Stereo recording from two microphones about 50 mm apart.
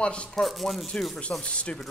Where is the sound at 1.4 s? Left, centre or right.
Left.